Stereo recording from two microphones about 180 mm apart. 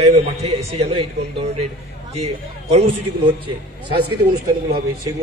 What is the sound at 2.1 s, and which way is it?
Speech, 35° right (ahead or behind).